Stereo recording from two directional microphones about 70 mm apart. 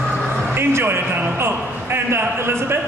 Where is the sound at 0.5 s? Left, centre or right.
Right.